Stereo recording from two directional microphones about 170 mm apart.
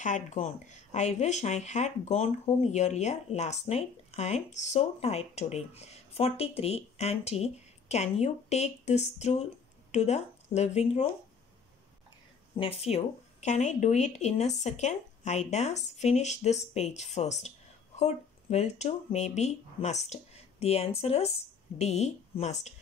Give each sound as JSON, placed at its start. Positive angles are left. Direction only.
{"t": 0.0, "sound": "speech", "side_deg": 45}
{"t": 12.5, "sound": "speech", "side_deg": 35}